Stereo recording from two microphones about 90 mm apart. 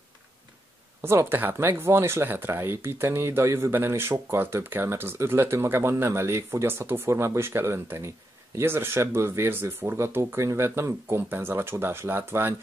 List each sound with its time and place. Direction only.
1.0 s speech: 25° right (ahead or behind)